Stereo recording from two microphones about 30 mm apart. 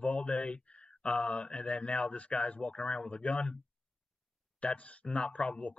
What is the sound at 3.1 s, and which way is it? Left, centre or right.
Speech, left.